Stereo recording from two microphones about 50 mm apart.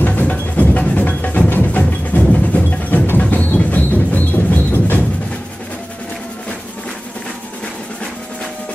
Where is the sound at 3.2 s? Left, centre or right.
Left.